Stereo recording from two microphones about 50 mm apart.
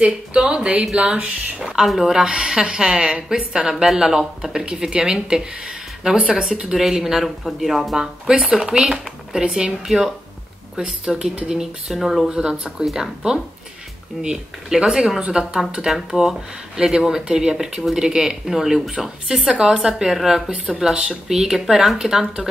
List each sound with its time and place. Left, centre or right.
0.0 s speech: right
1.9 s speech: centre
3.7 s speech: centre
10.8 s speech: centre
11.5 s speech: centre